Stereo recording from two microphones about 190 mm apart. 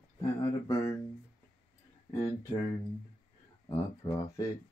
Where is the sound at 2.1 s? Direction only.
15° left (ahead or behind).